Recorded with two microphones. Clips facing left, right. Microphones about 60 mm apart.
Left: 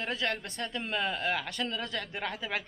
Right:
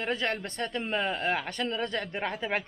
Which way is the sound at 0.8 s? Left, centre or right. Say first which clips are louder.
Right 2 dB; right.